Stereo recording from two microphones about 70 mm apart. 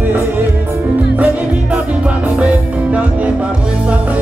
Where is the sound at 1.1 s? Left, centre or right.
Centre.